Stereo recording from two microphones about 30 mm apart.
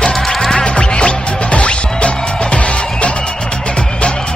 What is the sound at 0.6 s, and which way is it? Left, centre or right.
Music, left.